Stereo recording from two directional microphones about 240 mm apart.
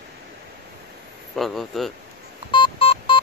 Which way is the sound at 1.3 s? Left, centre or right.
Centre.